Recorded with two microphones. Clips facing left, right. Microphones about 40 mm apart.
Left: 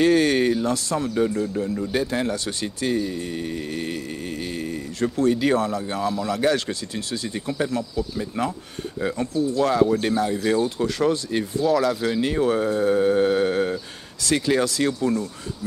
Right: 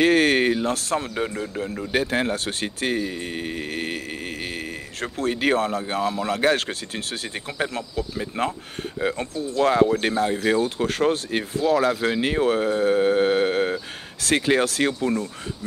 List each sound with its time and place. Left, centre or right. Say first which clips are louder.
0.0 s speech: even; right
1.0 s speech: left 5 dB; right